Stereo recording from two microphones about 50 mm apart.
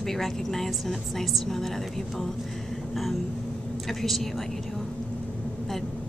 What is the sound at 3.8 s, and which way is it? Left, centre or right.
Speech, centre.